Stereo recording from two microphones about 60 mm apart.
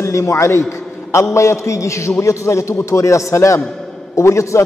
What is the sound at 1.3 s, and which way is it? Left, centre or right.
A man's voice, left.